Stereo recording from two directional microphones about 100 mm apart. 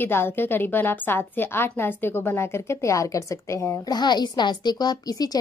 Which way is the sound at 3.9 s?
45° left (ahead or behind).